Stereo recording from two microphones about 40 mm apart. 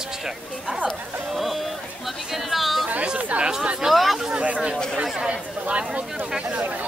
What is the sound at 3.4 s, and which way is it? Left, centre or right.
Speech, right.